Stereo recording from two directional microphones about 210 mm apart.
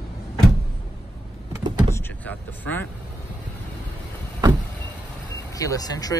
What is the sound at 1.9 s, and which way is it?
Speech, 10° left (ahead or behind).